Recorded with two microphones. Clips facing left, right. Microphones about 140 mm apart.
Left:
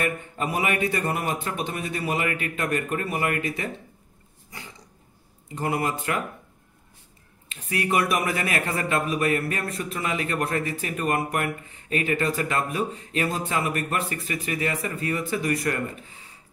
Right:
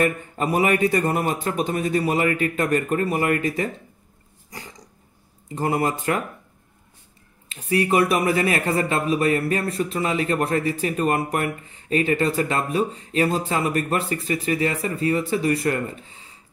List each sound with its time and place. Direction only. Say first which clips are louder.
0.0 s a man's voice: right 5 dB; 40° right (ahead or behind)
4.5 s throat clearing: right 3 dB; 40° right (ahead or behind)
5.5 s a man's voice: right 4 dB; 35° right (ahead or behind)
7.4 s a man's voice: right 6 dB; 35° right (ahead or behind)